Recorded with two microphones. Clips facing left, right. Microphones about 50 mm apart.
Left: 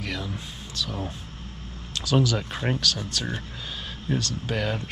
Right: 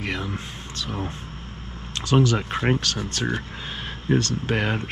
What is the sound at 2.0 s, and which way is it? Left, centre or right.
Speech, right.